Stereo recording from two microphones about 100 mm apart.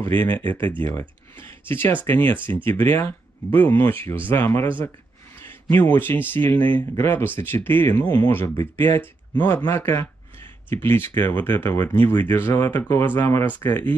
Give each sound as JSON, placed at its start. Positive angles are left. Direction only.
{"t": 0.0, "sound": "speech", "side_deg": 20}